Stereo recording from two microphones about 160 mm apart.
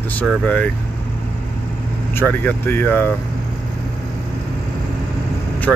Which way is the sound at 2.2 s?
10° left (ahead or behind).